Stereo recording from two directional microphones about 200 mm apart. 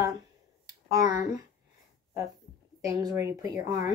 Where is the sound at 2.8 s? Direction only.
15° right (ahead or behind).